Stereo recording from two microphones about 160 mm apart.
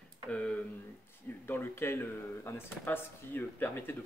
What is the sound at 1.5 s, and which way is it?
Speech, 15° left (ahead or behind).